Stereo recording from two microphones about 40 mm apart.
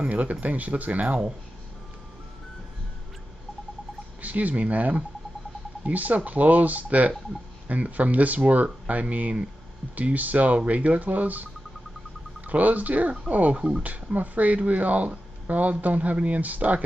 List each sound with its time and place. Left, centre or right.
0.1 s speech: right
4.2 s a man's voice: right